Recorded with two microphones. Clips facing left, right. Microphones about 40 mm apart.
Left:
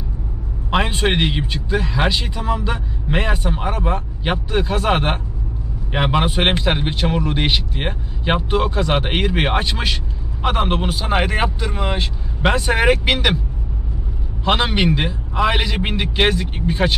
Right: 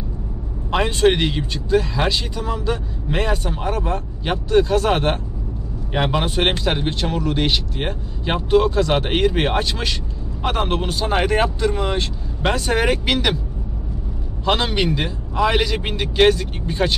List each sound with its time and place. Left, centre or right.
0.7 s speech: centre
14.4 s speech: left